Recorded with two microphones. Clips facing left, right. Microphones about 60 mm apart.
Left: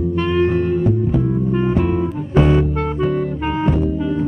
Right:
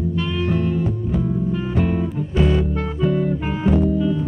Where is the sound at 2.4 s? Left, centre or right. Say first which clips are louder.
Left 2 dB; left.